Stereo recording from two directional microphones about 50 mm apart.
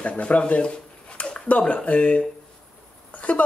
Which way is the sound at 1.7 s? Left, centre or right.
Left.